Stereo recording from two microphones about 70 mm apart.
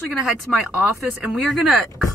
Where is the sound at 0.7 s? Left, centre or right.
Centre.